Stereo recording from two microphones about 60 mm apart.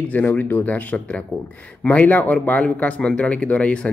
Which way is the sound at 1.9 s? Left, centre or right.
Left.